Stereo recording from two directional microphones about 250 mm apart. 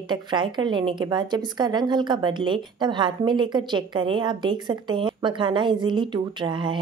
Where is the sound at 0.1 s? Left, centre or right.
Centre.